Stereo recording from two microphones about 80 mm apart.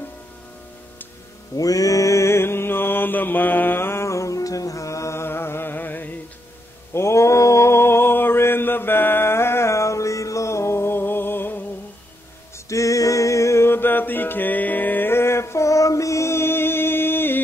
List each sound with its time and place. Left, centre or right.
1.6 s mantra: left
6.9 s mantra: left
12.6 s mantra: left